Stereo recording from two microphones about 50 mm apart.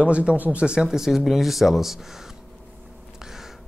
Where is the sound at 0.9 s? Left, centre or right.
Centre.